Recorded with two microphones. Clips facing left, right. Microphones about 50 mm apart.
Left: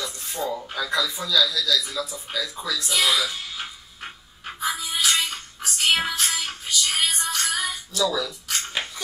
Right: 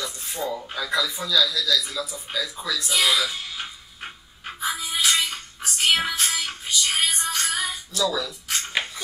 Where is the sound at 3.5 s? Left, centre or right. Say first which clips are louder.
Even; centre.